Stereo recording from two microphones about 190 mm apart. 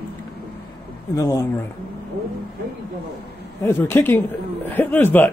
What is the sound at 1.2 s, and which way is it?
Speech, 20° left (ahead or behind).